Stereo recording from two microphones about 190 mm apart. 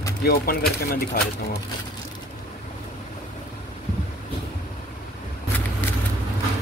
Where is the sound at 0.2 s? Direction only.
55° left (ahead or behind).